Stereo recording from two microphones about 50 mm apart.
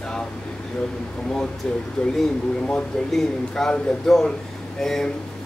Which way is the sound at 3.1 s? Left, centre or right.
Centre.